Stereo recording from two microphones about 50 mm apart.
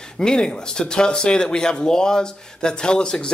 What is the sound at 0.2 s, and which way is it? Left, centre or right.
Speech, centre.